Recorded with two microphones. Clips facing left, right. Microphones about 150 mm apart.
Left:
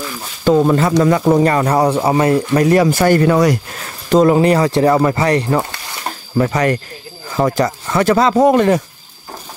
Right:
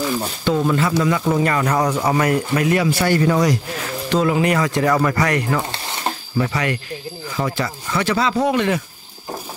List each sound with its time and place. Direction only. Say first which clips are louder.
0.5 s speech: left 6 dB; 40° left (ahead or behind); by 3.5 s 60° left (ahead or behind)
4.1 s speech: left 7 dB; 40° left (ahead or behind)
6.3 s speech: left 7 dB; 45° left (ahead or behind)